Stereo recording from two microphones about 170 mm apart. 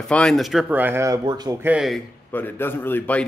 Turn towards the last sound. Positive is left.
turn(degrees=10)  # may be behind; listen again after turning